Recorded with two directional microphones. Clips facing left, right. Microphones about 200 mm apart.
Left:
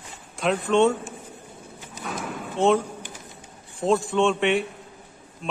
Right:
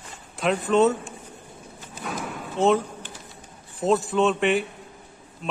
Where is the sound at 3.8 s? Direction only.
Centre (ahead or behind).